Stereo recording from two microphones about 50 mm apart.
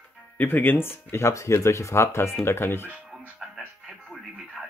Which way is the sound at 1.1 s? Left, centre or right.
Left.